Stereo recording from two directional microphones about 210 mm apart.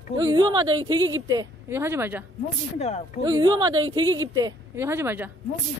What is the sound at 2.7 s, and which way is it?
Speech, 30° left (ahead or behind).